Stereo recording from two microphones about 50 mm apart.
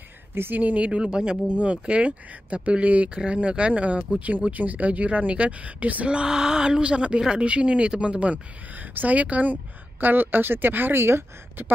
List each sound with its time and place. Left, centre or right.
0.3 s speech: right
0.6 s a woman's voice: right
11.0 s speech: right